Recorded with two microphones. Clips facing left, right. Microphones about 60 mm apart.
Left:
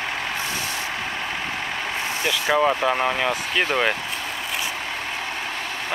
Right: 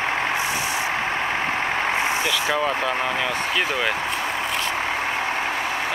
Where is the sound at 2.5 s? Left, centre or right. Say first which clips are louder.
Left 7 dB; centre.